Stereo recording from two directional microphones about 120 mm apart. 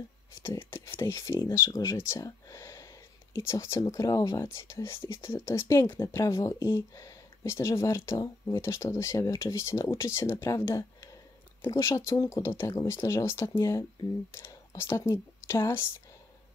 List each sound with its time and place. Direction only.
0.4 s speech: 20° left (ahead or behind)
14.8 s speech: 20° left (ahead or behind)